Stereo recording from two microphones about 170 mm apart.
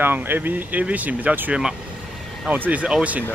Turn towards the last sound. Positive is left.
turn(degrees=-10)  # may be behind; listen again after turning